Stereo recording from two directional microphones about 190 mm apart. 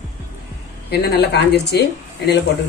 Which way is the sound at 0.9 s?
60° left (ahead or behind).